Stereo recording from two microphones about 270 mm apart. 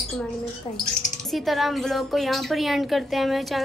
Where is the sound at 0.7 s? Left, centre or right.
Left.